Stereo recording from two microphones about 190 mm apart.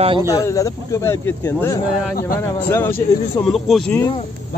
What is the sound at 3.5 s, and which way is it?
Speech, centre (ahead or behind).